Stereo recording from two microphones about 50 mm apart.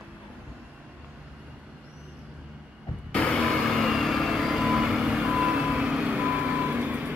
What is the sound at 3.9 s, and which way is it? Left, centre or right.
Vehicle, centre.